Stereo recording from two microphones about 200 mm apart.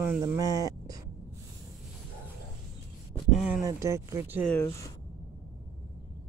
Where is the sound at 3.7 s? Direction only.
15° right (ahead or behind).